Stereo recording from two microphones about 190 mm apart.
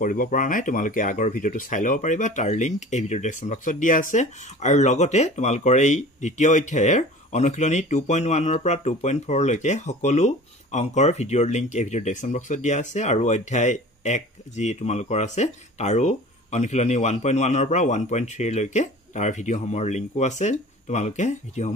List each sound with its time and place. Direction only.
0.0 s speech: 45° left (ahead or behind)